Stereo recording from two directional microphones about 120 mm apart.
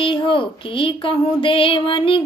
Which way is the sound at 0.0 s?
45° left (ahead or behind).